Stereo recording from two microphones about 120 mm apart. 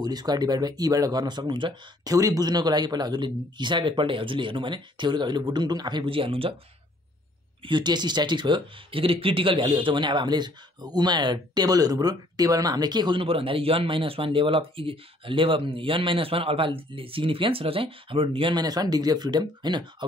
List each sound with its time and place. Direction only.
0.0 s speech: 35° right (ahead or behind); by 6.5 s 50° right (ahead or behind)
7.6 s speech: 40° right (ahead or behind)